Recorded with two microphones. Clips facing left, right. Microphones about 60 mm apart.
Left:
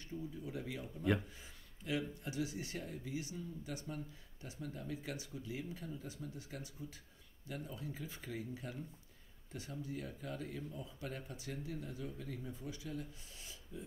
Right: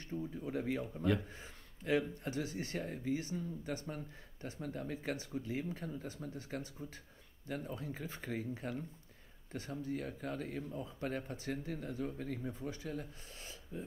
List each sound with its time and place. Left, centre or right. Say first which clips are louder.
0.1 s speech: right 5 dB; right